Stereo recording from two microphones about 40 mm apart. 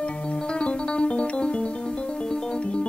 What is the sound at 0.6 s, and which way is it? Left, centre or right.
Piano, left.